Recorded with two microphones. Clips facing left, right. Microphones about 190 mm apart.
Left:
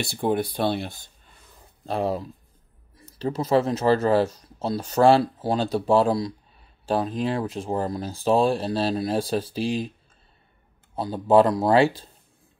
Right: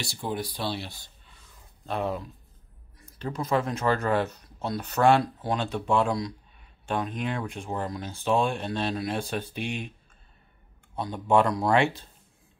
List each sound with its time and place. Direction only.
0.0 s speech: 55° left (ahead or behind)
1.9 s speech: 35° left (ahead or behind)
11.0 s speech: 30° left (ahead or behind)